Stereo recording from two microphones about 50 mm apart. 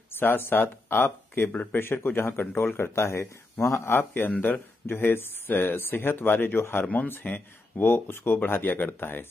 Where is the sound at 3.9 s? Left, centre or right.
Left.